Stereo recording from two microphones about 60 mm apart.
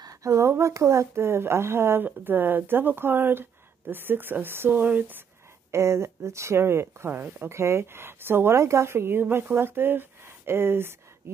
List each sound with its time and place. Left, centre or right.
0.0 s a woman's voice: right
5.7 s a woman's voice: right
7.4 s speech: right